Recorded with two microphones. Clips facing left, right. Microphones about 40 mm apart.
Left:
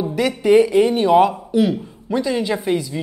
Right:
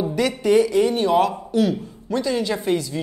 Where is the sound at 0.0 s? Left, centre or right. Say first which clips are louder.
Left 2 dB; centre.